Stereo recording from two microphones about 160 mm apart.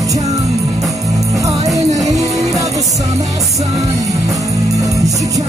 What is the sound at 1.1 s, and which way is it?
Music, 20° right (ahead or behind).